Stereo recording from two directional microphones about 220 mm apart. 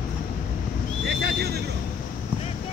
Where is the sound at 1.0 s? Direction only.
45° right (ahead or behind).